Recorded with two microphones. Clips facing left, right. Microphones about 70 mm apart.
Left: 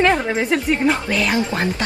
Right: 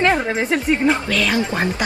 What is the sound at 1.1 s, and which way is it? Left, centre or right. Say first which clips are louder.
Speech: even; centre.